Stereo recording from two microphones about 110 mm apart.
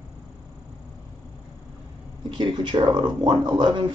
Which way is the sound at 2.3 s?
45° right (ahead or behind).